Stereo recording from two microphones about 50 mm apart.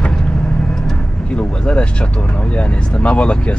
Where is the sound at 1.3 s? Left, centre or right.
Left.